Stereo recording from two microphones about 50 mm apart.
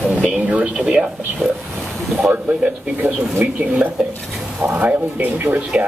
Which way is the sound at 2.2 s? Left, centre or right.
Centre.